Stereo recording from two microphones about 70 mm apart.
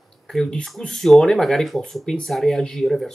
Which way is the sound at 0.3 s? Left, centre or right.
Centre.